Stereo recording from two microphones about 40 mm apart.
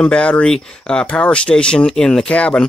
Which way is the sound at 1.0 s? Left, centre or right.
Left.